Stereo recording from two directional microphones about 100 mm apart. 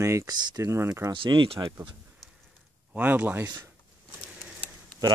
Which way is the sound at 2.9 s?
15° right (ahead or behind).